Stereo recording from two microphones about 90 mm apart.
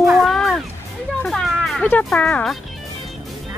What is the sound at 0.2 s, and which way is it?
Music, centre (ahead or behind).